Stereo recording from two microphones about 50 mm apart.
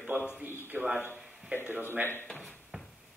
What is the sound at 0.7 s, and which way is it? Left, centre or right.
Speech, right.